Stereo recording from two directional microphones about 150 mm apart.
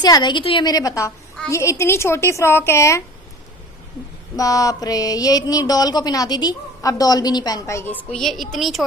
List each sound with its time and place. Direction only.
0.0 s a woman's voice: 30° left (ahead or behind)
4.4 s speech: 25° left (ahead or behind); by 8.8 s centre (ahead or behind)